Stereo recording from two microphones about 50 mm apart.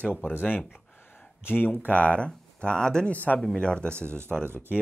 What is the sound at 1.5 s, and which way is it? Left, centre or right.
Speech, left.